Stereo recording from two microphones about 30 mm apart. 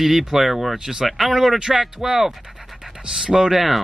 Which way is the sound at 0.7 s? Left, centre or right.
Centre.